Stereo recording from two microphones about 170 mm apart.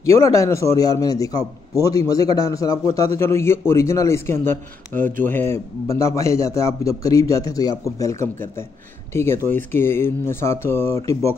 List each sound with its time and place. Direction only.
0.0 s a man's voice: 15° left (ahead or behind)